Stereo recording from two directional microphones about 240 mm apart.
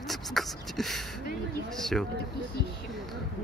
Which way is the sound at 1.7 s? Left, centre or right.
Centre.